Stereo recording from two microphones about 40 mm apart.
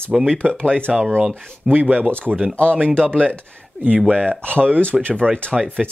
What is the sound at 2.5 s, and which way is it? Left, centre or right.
Speech, left.